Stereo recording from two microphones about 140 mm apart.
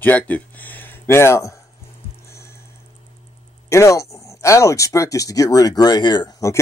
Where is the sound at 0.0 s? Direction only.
10° left (ahead or behind).